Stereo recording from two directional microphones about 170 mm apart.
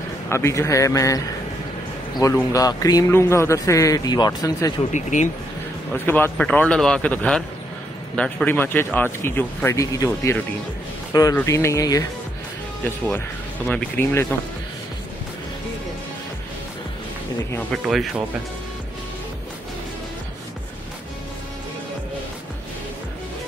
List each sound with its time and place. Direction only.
0.3 s speech: 15° left (ahead or behind)
4.9 s speech: 45° left (ahead or behind)
6.0 s speech: 10° left (ahead or behind)
13.7 s speech: 10° left (ahead or behind)
17.8 s speech: centre (ahead or behind)